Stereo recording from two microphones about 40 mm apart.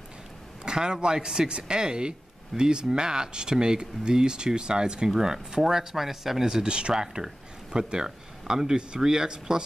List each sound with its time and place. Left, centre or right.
0.7 s speech: centre